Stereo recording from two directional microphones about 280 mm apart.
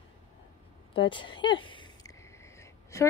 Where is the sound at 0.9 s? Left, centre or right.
Centre.